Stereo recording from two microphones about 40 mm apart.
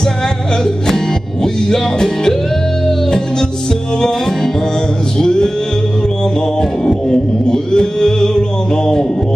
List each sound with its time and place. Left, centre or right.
0.7 s music: centre
5.2 s music: centre
6.8 s music: centre